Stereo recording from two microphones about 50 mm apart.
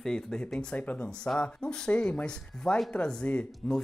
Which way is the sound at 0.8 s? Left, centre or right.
Left.